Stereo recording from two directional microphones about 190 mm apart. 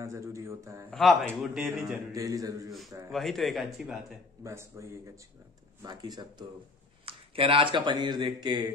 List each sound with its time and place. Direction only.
0.0 s speech: 15° right (ahead or behind)
0.8 s a man's voice: 5° left (ahead or behind)
2.1 s speech: 20° right (ahead or behind)
3.1 s a man's voice: centre (ahead or behind)
4.4 s speech: 15° right (ahead or behind)